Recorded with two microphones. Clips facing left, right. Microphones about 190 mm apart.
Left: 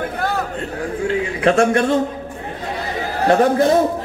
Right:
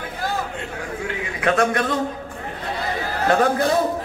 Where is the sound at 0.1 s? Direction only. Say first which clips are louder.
Left 4 dB; 65° left (ahead or behind).